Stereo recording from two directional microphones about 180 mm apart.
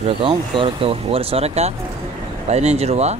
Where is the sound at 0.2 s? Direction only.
30° right (ahead or behind).